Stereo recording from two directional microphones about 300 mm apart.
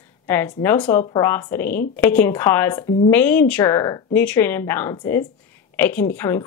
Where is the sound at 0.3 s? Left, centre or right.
Centre.